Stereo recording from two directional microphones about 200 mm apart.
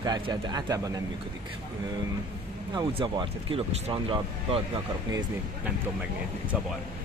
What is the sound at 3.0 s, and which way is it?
Speech, 25° right (ahead or behind).